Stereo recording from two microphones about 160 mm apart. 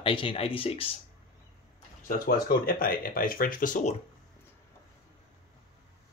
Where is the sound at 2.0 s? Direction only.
65° left (ahead or behind).